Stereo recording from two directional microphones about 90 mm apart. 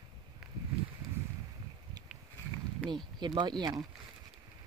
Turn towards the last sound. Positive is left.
turn(degrees=-50)  # may be behind; listen again after turning